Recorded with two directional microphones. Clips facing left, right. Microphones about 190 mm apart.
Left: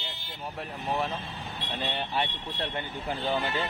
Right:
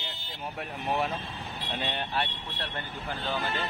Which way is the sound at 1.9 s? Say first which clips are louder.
Left 3 dB; 10° left (ahead or behind).